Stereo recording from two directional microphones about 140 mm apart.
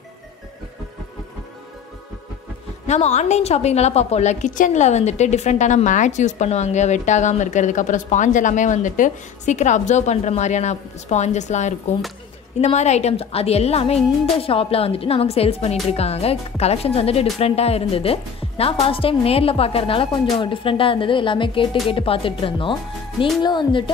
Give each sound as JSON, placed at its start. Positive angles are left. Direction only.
{"t": 2.9, "sound": "a woman's voice", "side_deg": 55}